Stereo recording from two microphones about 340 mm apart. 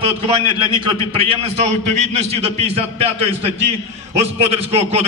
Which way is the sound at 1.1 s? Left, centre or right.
Centre.